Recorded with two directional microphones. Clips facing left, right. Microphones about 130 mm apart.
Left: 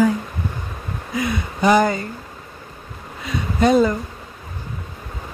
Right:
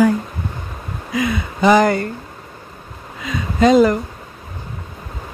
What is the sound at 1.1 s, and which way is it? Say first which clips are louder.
Speech: right 3 dB; 90° right.